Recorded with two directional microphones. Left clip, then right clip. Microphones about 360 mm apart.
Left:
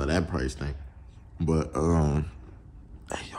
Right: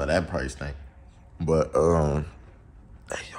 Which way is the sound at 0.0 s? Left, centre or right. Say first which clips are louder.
Right 3 dB; centre.